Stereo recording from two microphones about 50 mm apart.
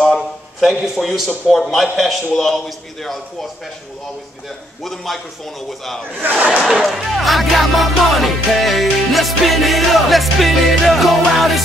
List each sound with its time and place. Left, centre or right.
0.6 s music: centre
4.8 s music: centre
6.2 s speech: right
6.7 s music: centre